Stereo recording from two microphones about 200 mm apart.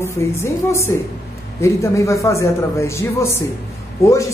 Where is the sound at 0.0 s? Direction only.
15° left (ahead or behind).